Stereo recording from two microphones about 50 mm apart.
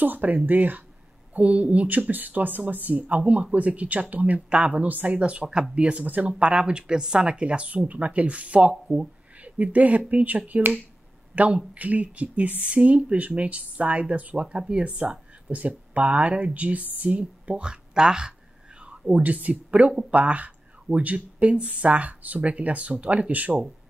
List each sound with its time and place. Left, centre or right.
0.0 s speech: right
4.8 s speech: right
5.1 s speech: right
8.8 s speech: centre
9.4 s a woman's voice: right